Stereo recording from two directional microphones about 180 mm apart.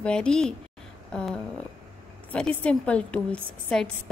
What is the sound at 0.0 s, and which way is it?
Speech, 5° left (ahead or behind).